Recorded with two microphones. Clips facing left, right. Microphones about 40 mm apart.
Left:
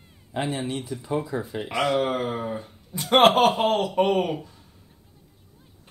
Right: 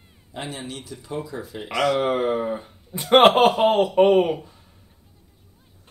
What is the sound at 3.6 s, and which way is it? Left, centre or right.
Speech, centre.